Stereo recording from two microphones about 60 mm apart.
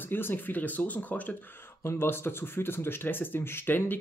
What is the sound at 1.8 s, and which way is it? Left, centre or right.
Speech, left.